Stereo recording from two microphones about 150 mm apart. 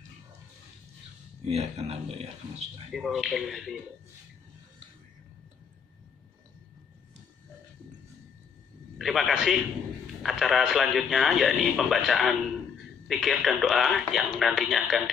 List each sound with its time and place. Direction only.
1.5 s speech: 45° right (ahead or behind)
2.9 s speech: centre (ahead or behind)
8.9 s speech: centre (ahead or behind)